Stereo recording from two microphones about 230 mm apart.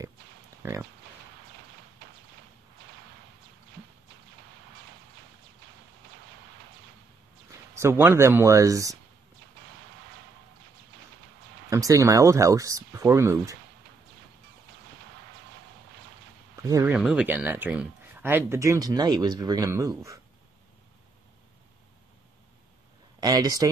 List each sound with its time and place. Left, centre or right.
0.6 s pig: centre
7.7 s speech: centre
11.7 s speech: centre
16.6 s speech: centre
23.2 s speech: centre